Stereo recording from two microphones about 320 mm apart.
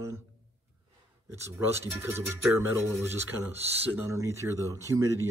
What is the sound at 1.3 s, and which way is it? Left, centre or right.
Speech, centre.